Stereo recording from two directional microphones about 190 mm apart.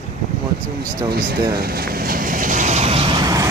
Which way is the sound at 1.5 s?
55° right (ahead or behind).